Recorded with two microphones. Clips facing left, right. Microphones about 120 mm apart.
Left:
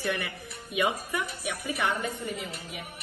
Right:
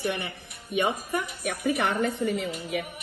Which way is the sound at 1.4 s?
55° right (ahead or behind).